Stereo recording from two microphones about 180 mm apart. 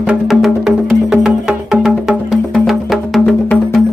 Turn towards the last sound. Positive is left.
turn(degrees=0)  # may be behind; listen again after turning